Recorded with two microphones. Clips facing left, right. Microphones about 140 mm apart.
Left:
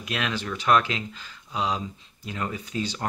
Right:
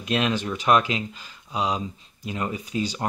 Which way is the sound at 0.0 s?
25° right (ahead or behind).